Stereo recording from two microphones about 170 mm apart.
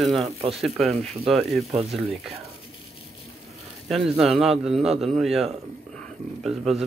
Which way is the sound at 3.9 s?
Centre (ahead or behind).